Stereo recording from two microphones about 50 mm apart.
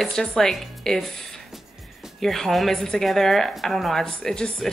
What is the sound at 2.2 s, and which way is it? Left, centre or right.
A woman's voice, centre.